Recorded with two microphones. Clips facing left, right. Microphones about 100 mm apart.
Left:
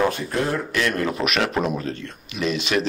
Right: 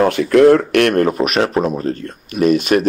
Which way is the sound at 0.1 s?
90° right.